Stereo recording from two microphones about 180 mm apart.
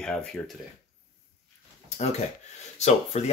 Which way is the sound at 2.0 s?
40° left (ahead or behind).